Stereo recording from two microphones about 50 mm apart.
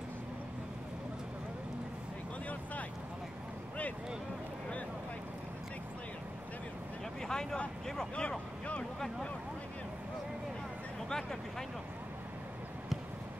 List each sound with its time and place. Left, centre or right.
7.2 s vehicle: centre
7.8 s speech: centre
11.1 s speech: centre